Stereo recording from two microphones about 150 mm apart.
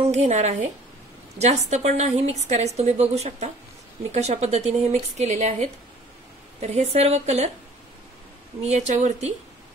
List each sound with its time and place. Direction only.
0.1 s a woman's voice: 45° right (ahead or behind)
8.6 s a woman's voice: 50° right (ahead or behind)